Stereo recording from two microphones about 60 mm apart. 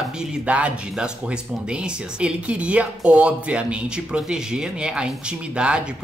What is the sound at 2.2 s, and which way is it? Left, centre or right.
Speech, centre.